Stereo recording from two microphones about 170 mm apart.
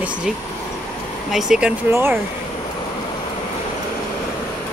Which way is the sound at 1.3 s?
5° right (ahead or behind).